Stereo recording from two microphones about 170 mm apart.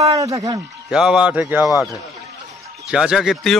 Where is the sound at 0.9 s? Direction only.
5° right (ahead or behind).